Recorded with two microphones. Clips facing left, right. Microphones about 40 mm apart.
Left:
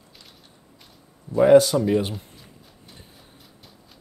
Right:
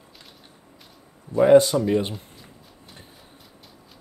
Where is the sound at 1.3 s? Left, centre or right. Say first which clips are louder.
Even; right.